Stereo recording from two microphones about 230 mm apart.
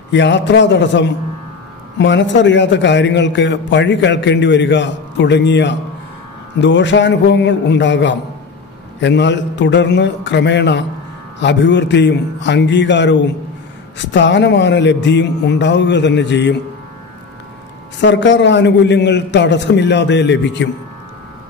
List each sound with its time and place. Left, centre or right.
0.1 s a man's voice: left
18.0 s a man's voice: left